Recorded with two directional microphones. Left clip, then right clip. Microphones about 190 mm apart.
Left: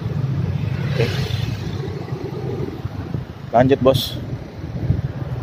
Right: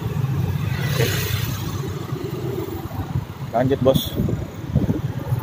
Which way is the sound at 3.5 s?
20° left (ahead or behind).